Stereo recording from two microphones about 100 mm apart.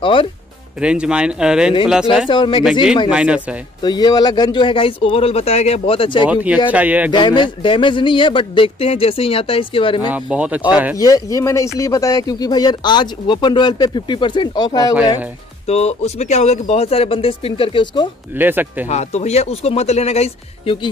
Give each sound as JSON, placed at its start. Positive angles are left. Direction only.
{"t": 0.0, "sound": "speech", "side_deg": 60}
{"t": 0.7, "sound": "speech", "side_deg": -10}
{"t": 2.2, "sound": "speech", "side_deg": 55}
{"t": 3.1, "sound": "speech", "side_deg": -10}
{"t": 3.8, "sound": "speech", "side_deg": 45}
{"t": 6.2, "sound": "speech", "side_deg": -15}
{"t": 7.1, "sound": "speech", "side_deg": 50}
{"t": 10.1, "sound": "speech", "side_deg": -15}
{"t": 11.0, "sound": "speech", "side_deg": 35}
{"t": 15.6, "sound": "speech", "side_deg": 90}
{"t": 18.4, "sound": "speech", "side_deg": -20}
{"t": 18.9, "sound": "speech", "side_deg": 90}